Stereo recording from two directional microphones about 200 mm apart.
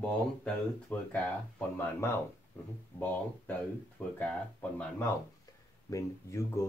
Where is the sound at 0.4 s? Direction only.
5° left (ahead or behind).